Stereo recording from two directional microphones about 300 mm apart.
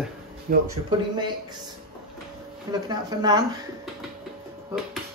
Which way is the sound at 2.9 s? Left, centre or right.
Centre.